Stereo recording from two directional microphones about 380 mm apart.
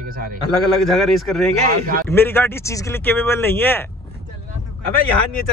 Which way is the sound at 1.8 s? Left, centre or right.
Right.